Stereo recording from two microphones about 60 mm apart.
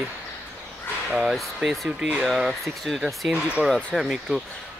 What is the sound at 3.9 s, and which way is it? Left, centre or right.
Speech, centre.